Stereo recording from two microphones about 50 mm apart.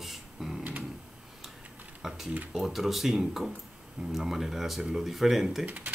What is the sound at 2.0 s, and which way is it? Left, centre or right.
Speech, centre.